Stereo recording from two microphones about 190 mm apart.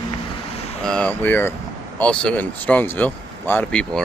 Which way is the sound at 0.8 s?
5° left (ahead or behind).